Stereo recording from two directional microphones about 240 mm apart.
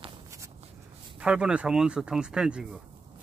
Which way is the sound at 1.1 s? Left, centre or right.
Centre.